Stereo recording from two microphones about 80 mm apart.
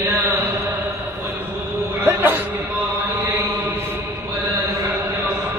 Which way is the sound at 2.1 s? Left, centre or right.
Right.